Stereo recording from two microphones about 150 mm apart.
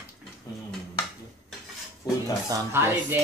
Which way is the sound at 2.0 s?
25° left (ahead or behind).